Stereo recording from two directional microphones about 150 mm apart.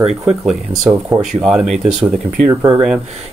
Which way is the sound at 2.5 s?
20° right (ahead or behind).